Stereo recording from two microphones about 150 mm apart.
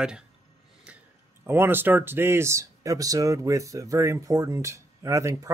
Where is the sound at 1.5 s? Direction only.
15° right (ahead or behind).